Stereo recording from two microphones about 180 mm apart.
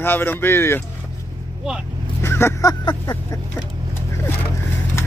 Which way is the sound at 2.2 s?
15° left (ahead or behind).